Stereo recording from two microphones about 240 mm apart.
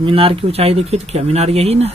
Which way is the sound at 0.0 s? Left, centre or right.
Right.